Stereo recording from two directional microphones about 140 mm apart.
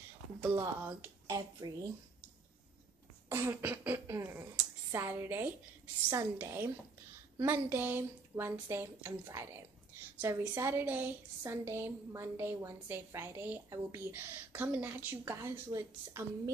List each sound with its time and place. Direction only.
0.4 s speech: 15° right (ahead or behind)
3.3 s a woman's voice: 15° right (ahead or behind)